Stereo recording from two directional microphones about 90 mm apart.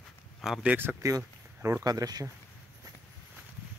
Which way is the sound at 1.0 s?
35° right (ahead or behind).